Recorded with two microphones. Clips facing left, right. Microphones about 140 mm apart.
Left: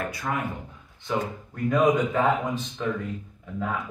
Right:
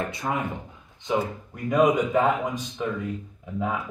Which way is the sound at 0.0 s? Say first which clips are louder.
Right 1 dB; 20° right (ahead or behind).